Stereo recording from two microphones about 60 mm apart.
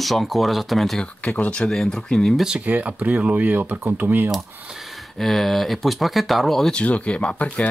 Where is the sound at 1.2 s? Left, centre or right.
Left.